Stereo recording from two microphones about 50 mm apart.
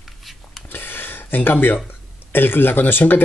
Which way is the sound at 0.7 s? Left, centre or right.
Left.